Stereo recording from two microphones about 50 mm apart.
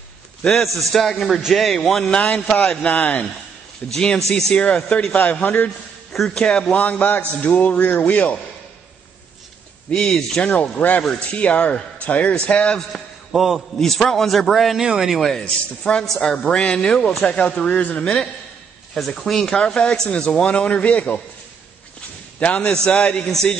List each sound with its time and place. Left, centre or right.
0.4 s a man's voice: centre
2.0 s a man's voice: left
6.1 s speech: centre
6.8 s a man's voice: left
9.8 s speech: centre
10.5 s a man's voice: left
12.9 s a sound: centre
13.7 s a man's voice: centre
14.8 s speech: centre
15.1 s a man's voice: centre
18.9 s speech: centre
19.6 s a man's voice: left
22.4 s a man's voice: left